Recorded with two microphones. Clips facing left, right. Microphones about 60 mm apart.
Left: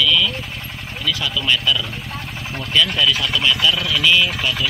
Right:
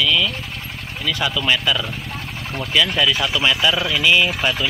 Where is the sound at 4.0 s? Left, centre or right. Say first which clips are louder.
Even; centre.